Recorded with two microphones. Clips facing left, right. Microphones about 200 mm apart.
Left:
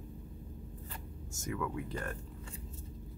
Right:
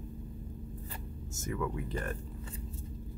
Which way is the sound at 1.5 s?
5° right (ahead or behind).